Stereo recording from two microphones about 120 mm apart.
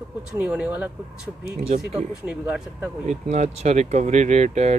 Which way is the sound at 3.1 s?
70° right (ahead or behind).